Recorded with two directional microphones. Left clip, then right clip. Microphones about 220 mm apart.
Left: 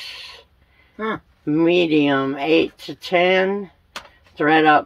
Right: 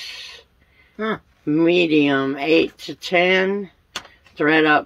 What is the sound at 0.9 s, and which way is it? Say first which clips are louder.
Speech: right 1 dB; 50° right (ahead or behind).